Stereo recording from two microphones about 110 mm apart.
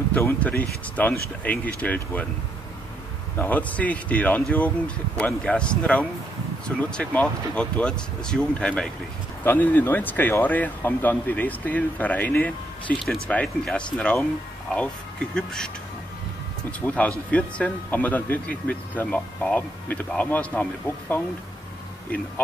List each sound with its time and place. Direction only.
0.2 s speech: 15° left (ahead or behind)
3.3 s speech: 15° left (ahead or behind)
15.3 s speech: 5° left (ahead or behind)
16.8 s speech: 15° left (ahead or behind)